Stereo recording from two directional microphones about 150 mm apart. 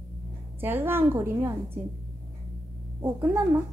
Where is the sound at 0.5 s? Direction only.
15° right (ahead or behind).